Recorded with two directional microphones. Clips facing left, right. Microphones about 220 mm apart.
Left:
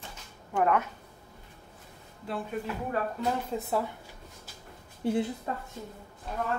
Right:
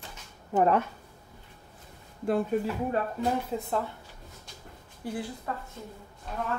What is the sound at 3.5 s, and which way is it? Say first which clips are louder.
Speech: even; 5° left (ahead or behind).